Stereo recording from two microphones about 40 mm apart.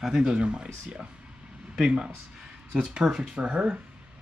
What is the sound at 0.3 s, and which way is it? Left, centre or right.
Speech, right.